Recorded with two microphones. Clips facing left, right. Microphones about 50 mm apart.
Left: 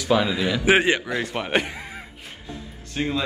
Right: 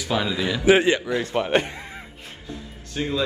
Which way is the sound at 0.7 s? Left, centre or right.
Left.